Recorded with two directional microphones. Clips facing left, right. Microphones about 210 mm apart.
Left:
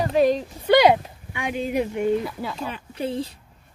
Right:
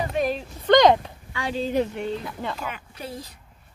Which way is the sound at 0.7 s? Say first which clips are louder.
Even; 10° left (ahead or behind).